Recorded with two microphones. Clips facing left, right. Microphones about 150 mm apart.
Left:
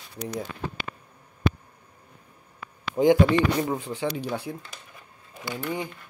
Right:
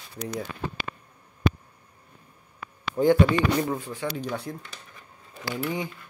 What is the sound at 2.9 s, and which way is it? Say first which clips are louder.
Speech: left 1 dB; 20° left (ahead or behind).